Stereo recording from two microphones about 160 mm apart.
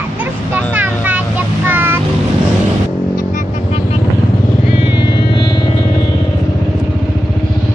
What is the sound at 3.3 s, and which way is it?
Vehicle, 40° left (ahead or behind).